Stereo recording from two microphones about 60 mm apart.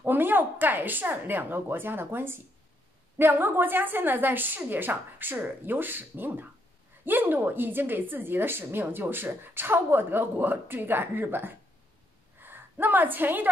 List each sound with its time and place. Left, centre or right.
0.0 s a woman's voice: right